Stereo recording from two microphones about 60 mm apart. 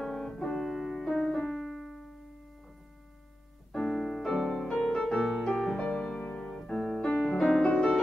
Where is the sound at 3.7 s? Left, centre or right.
Centre.